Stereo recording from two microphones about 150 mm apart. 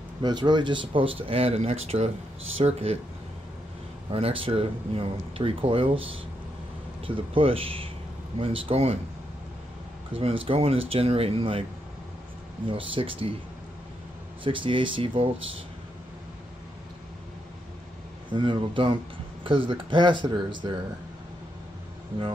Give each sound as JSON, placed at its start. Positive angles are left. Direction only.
{"t": 0.2, "sound": "speech", "side_deg": -30}
{"t": 4.1, "sound": "speech", "side_deg": -35}
{"t": 7.1, "sound": "speech", "side_deg": -35}
{"t": 10.1, "sound": "speech", "side_deg": -40}
{"t": 12.6, "sound": "speech", "side_deg": -35}
{"t": 14.4, "sound": "speech", "side_deg": -35}
{"t": 18.3, "sound": "speech", "side_deg": -35}